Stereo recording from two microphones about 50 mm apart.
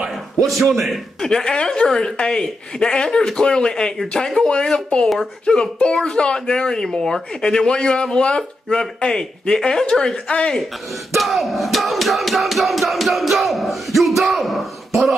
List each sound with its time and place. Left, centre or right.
0.4 s crowd: centre
1.2 s speech: centre
11.1 s crowd: centre